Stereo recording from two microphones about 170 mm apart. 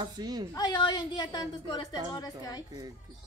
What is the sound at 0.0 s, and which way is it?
Speech, 25° right (ahead or behind).